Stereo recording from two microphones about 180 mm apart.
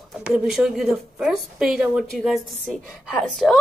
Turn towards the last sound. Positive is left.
turn(degrees=5)  # may be behind; listen again after turning